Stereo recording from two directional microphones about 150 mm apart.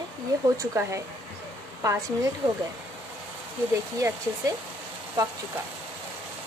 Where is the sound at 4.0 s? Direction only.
20° right (ahead or behind).